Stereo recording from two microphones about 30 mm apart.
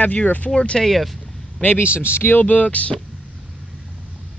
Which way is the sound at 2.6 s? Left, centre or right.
Left.